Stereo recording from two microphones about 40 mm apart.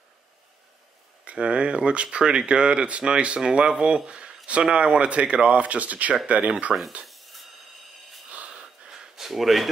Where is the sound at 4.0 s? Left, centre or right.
Right.